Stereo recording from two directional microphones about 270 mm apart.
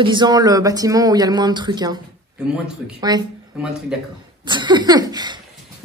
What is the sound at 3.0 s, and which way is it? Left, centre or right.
Speech, centre.